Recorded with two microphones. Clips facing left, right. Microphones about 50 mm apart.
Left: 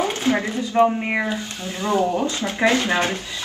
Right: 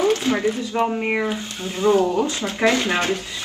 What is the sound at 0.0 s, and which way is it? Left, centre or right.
Speech, left.